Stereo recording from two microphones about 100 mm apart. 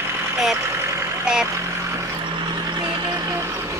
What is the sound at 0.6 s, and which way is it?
Vehicle, 25° right (ahead or behind).